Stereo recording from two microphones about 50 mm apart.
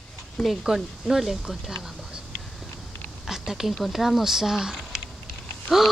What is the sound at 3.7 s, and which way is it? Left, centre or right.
Speech, centre.